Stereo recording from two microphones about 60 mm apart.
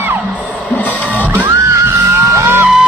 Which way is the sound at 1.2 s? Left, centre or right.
Right.